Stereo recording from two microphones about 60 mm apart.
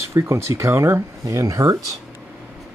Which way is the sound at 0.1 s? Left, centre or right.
Right.